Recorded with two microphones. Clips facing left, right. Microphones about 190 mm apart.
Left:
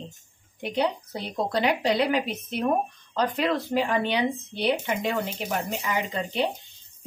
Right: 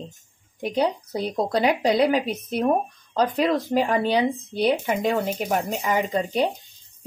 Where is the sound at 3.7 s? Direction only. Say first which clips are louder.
Right 4 dB; 40° right (ahead or behind).